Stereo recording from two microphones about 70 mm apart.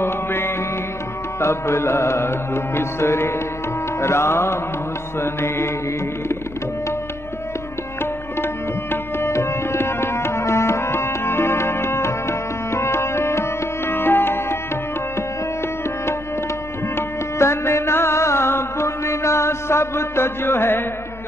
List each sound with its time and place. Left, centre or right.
0.0 s music: left
8.9 s tabla: left
16.9 s music: left